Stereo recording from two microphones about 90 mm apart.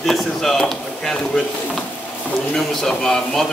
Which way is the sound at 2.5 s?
5° left (ahead or behind).